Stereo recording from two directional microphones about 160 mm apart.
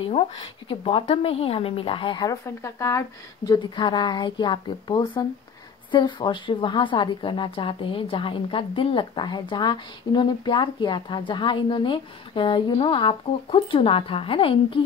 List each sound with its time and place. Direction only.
0.0 s a woman's voice: 35° left (ahead or behind); by 3.5 s 20° left (ahead or behind)
3.5 s a woman's voice: 30° left (ahead or behind)